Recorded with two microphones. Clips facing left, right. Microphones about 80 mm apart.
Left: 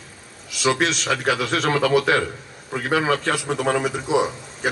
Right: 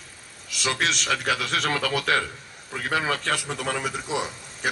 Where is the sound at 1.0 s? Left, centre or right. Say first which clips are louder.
Left 4 dB; centre.